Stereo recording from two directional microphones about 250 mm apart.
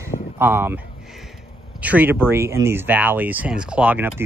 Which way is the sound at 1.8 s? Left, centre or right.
Centre.